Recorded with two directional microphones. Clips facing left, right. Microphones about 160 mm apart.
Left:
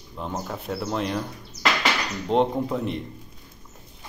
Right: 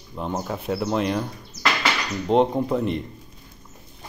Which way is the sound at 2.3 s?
5° right (ahead or behind).